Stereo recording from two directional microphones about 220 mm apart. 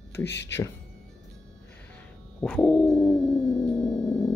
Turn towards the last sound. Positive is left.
turn(degrees=5)  # may be behind; listen again after turning